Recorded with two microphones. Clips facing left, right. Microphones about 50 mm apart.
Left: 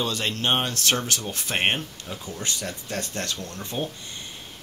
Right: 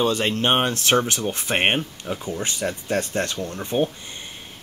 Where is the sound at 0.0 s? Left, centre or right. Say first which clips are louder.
Right 6 dB; right.